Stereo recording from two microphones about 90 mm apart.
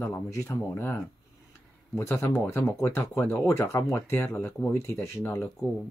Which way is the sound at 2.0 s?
30° left (ahead or behind).